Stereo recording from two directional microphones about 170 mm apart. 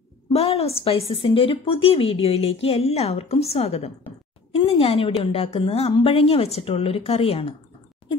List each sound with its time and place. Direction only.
0.3 s a woman's voice: 35° left (ahead or behind)